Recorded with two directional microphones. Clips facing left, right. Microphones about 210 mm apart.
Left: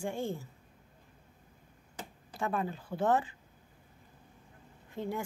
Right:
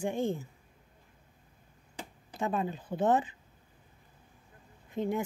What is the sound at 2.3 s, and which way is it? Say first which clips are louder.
Speech: right 2 dB; 20° right (ahead or behind).